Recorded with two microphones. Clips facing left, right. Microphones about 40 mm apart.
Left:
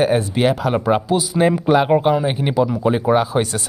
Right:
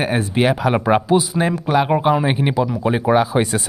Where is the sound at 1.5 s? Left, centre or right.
Centre.